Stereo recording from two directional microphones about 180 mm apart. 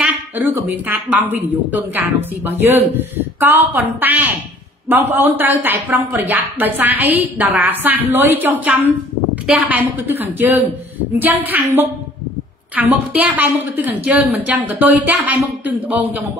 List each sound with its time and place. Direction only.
0.0 s speech: 10° right (ahead or behind)